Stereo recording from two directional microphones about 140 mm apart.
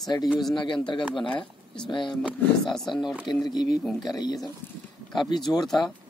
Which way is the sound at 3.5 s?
30° left (ahead or behind).